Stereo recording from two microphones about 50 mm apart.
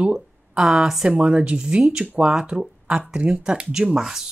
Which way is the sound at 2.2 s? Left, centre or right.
Centre.